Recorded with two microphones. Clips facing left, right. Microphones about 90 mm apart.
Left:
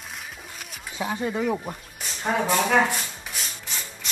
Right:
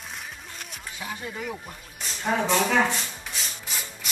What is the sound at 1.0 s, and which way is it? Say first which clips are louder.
Speech: left 9 dB; 35° left (ahead or behind).